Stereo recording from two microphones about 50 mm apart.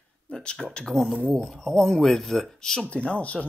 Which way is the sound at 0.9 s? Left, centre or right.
Right.